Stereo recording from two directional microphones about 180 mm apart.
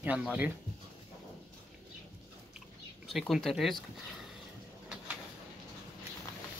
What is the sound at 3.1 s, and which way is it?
Speech, centre (ahead or behind).